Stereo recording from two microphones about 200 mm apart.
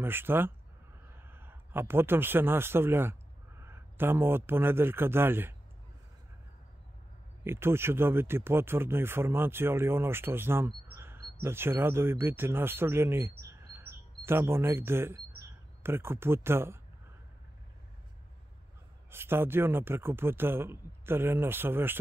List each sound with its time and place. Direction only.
0.0 s a man's voice: 10° right (ahead or behind)
7.4 s speech: 10° right (ahead or behind)
11.0 s a sound: 10° right (ahead or behind)
11.4 s speech: 10° right (ahead or behind)
13.5 s chirp: 10° right (ahead or behind)
15.8 s speech: 10° right (ahead or behind)
19.0 s speech: 10° right (ahead or behind)